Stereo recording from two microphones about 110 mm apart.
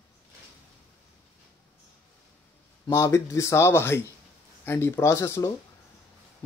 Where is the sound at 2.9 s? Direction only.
25° left (ahead or behind).